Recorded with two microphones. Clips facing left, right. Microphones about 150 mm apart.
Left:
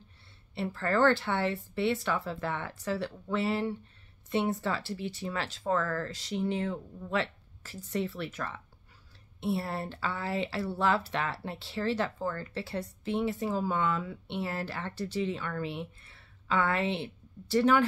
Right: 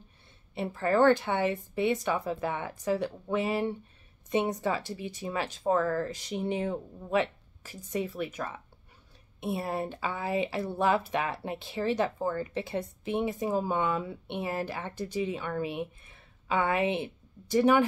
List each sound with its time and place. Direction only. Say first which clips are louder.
0.6 s speech: right 3 dB; 15° right (ahead or behind)